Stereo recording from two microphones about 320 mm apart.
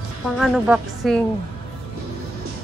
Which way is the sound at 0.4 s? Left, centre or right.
Centre.